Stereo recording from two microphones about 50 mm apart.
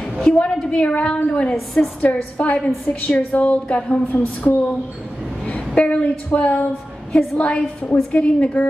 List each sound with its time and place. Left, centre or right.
0.2 s a woman's voice: centre
0.8 s a woman's voice: left